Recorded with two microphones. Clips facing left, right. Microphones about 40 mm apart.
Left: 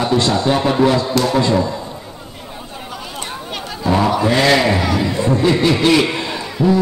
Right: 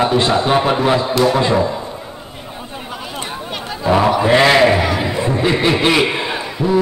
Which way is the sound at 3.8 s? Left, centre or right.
Centre.